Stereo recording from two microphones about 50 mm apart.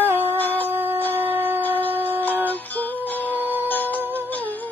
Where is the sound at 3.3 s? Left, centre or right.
Right.